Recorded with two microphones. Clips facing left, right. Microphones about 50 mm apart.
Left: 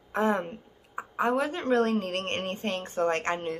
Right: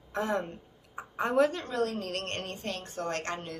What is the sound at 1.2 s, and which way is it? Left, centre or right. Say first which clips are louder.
Speech: right 1 dB; centre.